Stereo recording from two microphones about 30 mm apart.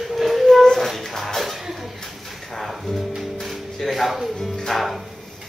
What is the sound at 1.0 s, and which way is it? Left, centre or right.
Music, centre.